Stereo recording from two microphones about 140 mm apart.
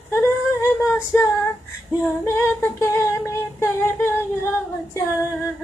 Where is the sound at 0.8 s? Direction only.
20° left (ahead or behind).